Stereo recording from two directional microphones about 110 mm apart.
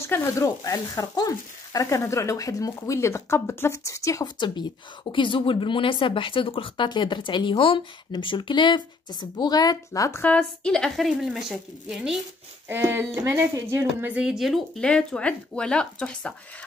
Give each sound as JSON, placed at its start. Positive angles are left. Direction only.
{"t": 0.0, "sound": "speech", "side_deg": 25}
{"t": 5.1, "sound": "speech", "side_deg": 50}
{"t": 10.2, "sound": "a woman's voice", "side_deg": 10}
{"t": 12.6, "sound": "speech", "side_deg": -20}